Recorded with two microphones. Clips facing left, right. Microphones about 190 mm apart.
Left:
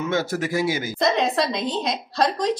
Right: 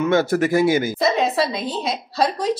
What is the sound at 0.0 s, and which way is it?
Speech, 55° right (ahead or behind).